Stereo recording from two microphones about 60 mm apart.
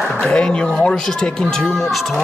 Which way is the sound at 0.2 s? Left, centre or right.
Centre.